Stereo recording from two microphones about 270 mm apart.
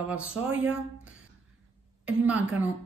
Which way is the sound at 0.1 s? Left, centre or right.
Centre.